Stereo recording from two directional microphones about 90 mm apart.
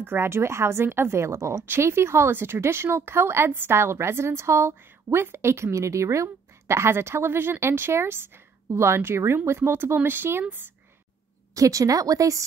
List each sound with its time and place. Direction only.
0.0 s a woman's voice: 25° right (ahead or behind)
11.5 s a woman's voice: 40° right (ahead or behind)